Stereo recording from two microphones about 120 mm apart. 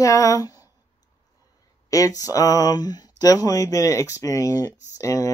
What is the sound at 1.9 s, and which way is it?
Speech, 30° left (ahead or behind).